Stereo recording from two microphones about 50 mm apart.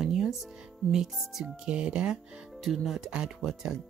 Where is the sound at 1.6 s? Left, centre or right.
Centre.